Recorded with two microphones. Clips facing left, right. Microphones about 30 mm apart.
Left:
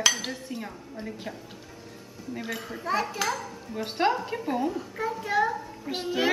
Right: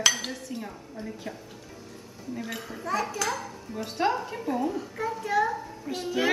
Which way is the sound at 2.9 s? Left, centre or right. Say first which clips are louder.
Left 1 dB; left.